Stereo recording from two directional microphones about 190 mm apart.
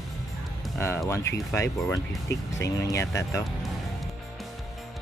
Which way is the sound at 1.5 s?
15° left (ahead or behind).